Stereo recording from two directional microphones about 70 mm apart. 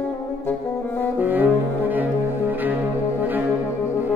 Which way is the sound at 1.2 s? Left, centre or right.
Right.